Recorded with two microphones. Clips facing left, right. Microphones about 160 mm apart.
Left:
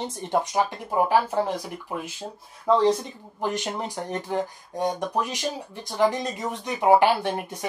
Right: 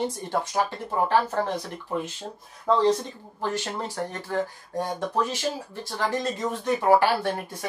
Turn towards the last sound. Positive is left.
turn(degrees=20)  # may be behind; listen again after turning